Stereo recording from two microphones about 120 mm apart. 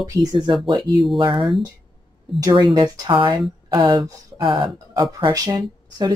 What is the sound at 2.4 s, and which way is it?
Speech, 40° right (ahead or behind).